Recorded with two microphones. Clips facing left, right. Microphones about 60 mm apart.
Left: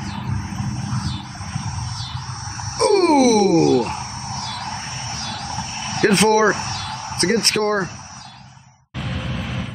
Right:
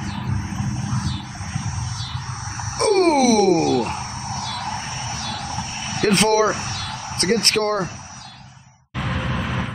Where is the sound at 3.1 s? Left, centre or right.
Left.